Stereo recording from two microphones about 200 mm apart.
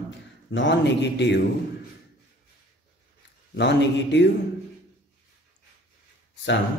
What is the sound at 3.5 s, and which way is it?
Speech, 60° left (ahead or behind).